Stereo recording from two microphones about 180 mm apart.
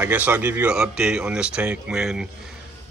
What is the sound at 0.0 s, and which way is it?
A man's voice, 10° right (ahead or behind).